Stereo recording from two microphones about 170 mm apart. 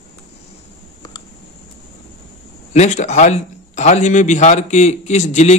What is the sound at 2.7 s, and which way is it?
A man's voice, 45° left (ahead or behind).